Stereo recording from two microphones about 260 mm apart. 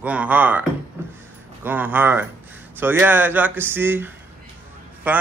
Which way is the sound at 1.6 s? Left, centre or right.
Centre.